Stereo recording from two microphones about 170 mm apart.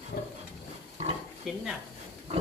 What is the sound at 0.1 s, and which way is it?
Roaring cats, 60° left (ahead or behind).